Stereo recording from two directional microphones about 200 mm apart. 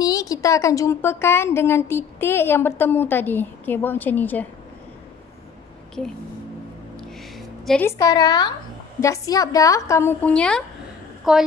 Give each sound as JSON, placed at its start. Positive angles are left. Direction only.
{"t": 0.0, "sound": "a woman's voice", "side_deg": 20}
{"t": 7.0, "sound": "a sound", "side_deg": 0}
{"t": 7.8, "sound": "a woman's voice", "side_deg": 15}